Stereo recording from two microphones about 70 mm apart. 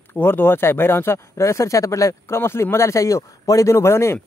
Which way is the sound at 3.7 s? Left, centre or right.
Left.